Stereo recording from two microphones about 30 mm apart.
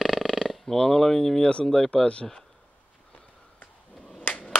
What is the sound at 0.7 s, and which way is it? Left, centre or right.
Speech, centre.